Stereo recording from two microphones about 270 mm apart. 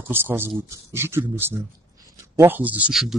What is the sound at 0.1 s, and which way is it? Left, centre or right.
A man's voice, centre.